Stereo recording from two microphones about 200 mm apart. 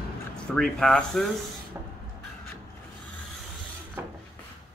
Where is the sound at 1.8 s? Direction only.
10° right (ahead or behind).